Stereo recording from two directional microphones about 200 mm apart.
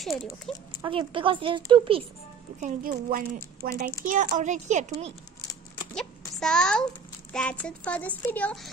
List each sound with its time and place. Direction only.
0.7 s speech: 25° right (ahead or behind)
2.6 s a woman's voice: 45° right (ahead or behind)
6.4 s a child's voice: 5° left (ahead or behind)